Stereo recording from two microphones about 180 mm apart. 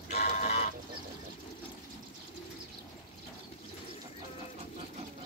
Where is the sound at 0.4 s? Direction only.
40° left (ahead or behind).